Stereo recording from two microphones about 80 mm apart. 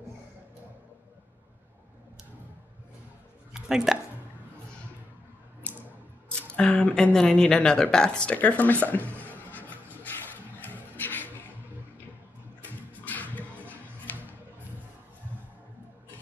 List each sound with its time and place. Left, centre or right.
3.6 s speech: centre
6.5 s speech: centre
7.2 s a sound: centre
13.0 s music: left